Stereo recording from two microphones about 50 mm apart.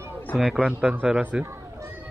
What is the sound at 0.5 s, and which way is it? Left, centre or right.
Speech, centre.